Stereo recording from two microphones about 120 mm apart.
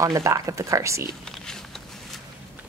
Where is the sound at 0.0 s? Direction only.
30° right (ahead or behind).